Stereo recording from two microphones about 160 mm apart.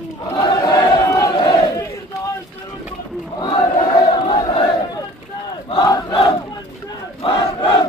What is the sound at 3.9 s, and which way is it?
Crowd, 30° left (ahead or behind).